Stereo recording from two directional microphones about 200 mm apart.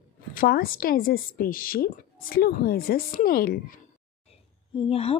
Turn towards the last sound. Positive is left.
turn(degrees=30)  # may be behind; listen again after turning